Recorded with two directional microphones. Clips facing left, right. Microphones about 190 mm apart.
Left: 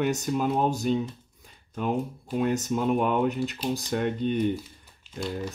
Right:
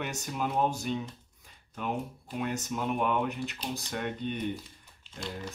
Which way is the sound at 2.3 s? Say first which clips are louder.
Left 7 dB; 35° left (ahead or behind).